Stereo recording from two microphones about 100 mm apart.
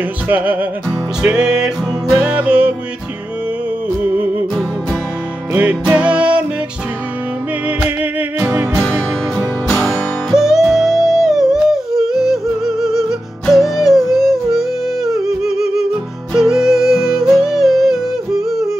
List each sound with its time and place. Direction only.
0.3 s music: 15° right (ahead or behind)
4.0 s music: 15° right (ahead or behind)
5.5 s music: 15° right (ahead or behind)
7.6 s music: 15° right (ahead or behind)
9.7 s music: 5° left (ahead or behind)
10.3 s music: 5° right (ahead or behind)
13.5 s yodeling: centre (ahead or behind)